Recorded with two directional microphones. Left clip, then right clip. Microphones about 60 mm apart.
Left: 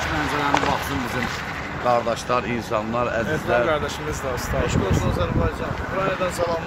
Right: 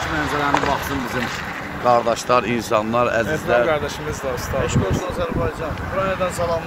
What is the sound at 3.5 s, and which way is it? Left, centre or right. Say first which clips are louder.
Speech: right 3 dB; right.